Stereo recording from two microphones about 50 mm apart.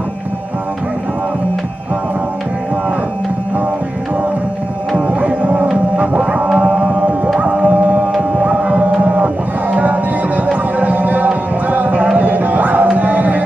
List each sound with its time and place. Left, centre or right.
4.9 s music: right